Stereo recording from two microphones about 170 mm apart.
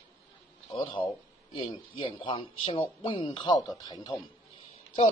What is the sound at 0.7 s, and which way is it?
Speech, 30° left (ahead or behind).